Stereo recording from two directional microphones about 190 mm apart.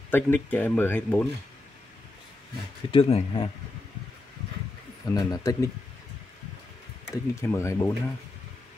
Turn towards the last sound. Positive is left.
turn(degrees=15)  # may be behind; listen again after turning